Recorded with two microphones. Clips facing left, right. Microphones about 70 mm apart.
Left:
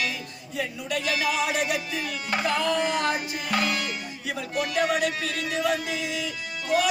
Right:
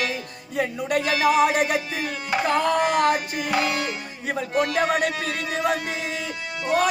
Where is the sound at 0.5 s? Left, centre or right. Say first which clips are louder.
Right 6 dB; right.